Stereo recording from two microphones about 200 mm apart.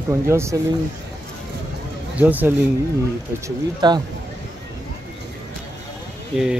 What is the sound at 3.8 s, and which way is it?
Speech, 20° right (ahead or behind).